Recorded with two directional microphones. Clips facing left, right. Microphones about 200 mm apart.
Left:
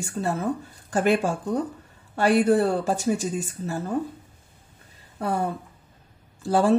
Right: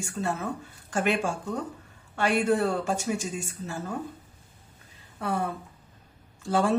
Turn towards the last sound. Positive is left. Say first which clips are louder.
# left 4 dB
turn(degrees=35)  # may be behind; listen again after turning